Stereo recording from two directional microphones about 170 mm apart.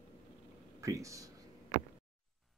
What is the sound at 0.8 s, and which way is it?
Speech, 20° right (ahead or behind).